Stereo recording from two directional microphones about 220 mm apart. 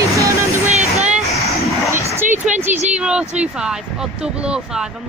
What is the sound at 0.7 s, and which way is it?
Vehicle, 30° right (ahead or behind).